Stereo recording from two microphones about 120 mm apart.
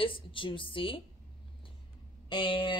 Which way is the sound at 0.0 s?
45° left (ahead or behind).